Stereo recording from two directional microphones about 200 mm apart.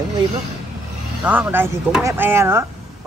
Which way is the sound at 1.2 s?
10° right (ahead or behind).